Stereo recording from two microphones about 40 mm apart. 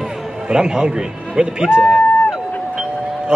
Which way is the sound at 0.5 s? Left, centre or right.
Centre.